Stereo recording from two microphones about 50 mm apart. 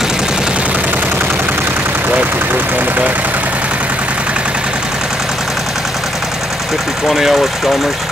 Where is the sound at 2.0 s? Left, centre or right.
Right.